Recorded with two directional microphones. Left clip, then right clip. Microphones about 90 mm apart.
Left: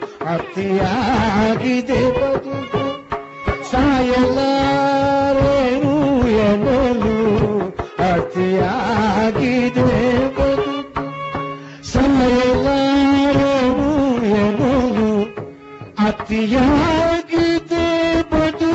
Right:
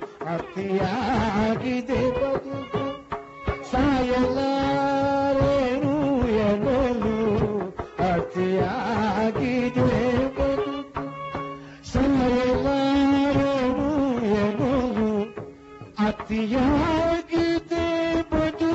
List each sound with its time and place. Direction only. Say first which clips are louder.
0.2 s music: left 8 dB; 15° left (ahead or behind)
11.9 s a sound: left 7 dB; 10° left (ahead or behind)
16.0 s music: left 7 dB; 20° left (ahead or behind)